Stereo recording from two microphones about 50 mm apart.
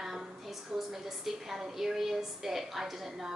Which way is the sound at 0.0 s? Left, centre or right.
Centre.